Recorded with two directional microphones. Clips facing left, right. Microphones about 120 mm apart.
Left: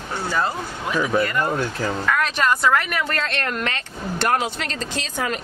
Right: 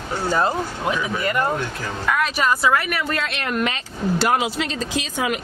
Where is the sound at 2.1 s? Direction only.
5° right (ahead or behind).